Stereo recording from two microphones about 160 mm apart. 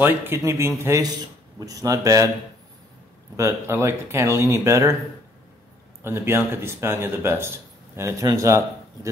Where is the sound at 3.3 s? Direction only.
15° right (ahead or behind).